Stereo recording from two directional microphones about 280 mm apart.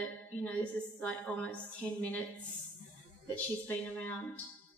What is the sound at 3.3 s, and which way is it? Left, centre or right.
Speech, centre.